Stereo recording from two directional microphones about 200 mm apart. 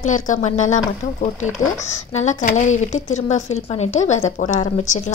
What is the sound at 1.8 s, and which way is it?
A woman's voice, 35° left (ahead or behind).